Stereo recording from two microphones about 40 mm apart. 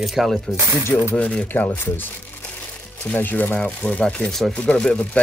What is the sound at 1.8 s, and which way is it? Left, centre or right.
Crumpling, left.